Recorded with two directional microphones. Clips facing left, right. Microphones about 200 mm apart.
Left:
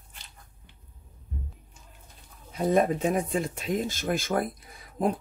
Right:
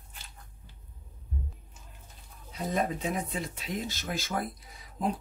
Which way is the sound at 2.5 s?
50° left (ahead or behind).